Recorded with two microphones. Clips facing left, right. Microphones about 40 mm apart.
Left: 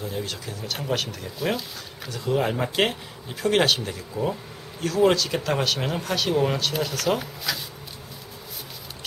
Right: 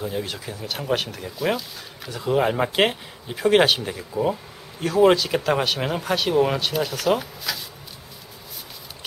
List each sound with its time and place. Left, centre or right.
0.0 s speech: centre